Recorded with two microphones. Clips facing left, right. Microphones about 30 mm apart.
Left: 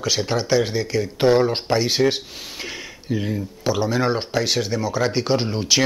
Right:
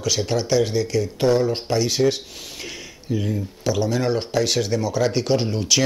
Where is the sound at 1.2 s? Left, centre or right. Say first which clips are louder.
Left 3 dB; left.